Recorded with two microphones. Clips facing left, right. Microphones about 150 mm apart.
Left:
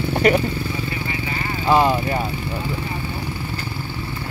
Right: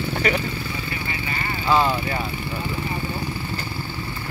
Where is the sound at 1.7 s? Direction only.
15° left (ahead or behind).